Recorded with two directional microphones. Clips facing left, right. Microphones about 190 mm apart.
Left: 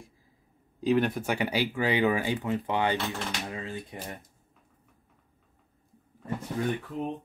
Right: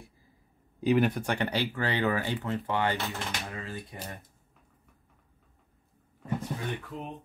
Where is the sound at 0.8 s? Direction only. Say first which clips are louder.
Even; centre (ahead or behind); by 3.0 s 15° left (ahead or behind).